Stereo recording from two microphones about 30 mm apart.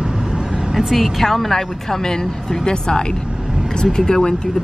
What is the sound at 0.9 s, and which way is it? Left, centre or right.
A woman's voice, centre.